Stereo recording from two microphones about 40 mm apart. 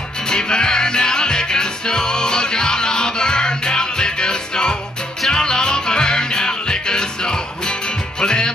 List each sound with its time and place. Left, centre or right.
0.3 s music: left